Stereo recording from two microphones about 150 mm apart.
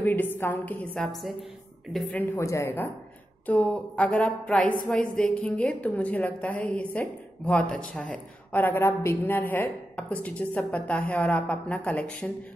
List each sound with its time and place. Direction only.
0.0 s a woman's voice: 15° left (ahead or behind)
1.0 s speech: centre (ahead or behind)
2.3 s a woman's voice: 20° left (ahead or behind)